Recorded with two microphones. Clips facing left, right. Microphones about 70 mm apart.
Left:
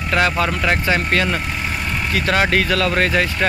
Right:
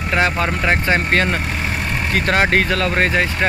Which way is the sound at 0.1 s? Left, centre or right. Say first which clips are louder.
Even; right.